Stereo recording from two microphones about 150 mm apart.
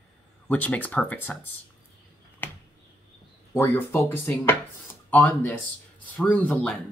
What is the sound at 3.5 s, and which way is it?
Speech, 15° left (ahead or behind).